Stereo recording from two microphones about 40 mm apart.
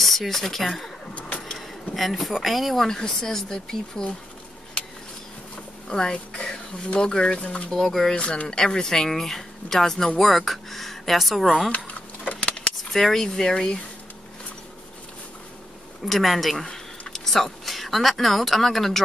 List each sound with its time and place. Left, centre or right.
0.0 s speech: centre
2.0 s speech: centre
5.9 s speech: centre
7.4 s speech: left
7.7 s speech: centre
8.1 s speech: left
8.5 s speech: centre
11.7 s a sound: left
12.9 s speech: centre
16.1 s speech: centre